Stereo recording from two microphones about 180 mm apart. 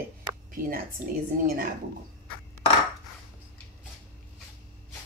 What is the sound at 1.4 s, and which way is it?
Speech, 55° right (ahead or behind).